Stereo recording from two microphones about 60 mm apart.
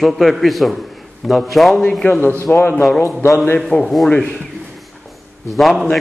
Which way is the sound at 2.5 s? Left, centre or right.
Left.